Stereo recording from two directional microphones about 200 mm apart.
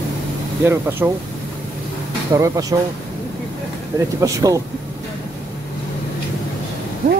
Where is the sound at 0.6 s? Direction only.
10° right (ahead or behind).